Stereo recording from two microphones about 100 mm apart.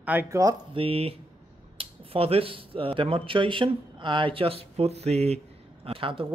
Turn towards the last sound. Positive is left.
turn(degrees=-60)  # may be behind; listen again after turning